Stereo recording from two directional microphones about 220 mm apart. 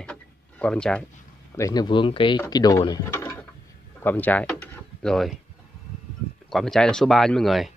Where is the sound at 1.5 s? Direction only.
15° left (ahead or behind).